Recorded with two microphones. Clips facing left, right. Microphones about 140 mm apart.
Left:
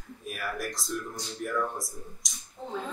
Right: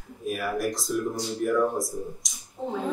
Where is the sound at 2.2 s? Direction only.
Centre (ahead or behind).